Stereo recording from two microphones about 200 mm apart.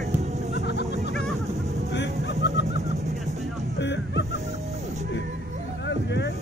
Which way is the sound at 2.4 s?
60° left (ahead or behind).